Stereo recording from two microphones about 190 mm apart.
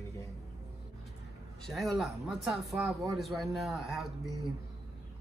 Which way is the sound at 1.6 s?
Centre (ahead or behind).